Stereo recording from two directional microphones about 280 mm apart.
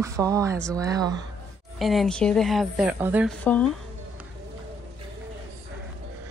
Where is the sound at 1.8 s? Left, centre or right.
Centre.